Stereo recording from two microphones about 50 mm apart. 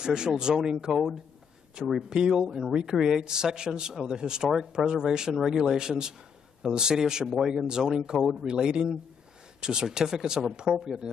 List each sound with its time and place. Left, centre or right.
0.0 s speech: centre
2.0 s speech: centre
10.7 s speech: centre